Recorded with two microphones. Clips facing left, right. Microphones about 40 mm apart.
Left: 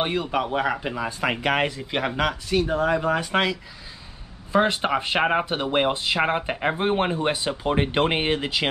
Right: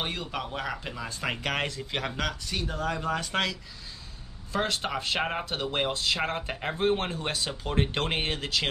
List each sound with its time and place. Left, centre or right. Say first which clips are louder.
0.0 s speech: left 9 dB; centre